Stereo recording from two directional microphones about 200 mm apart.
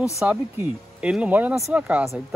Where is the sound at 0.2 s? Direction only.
10° right (ahead or behind).